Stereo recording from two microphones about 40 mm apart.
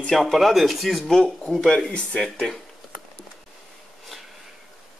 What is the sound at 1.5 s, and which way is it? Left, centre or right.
Speech, centre.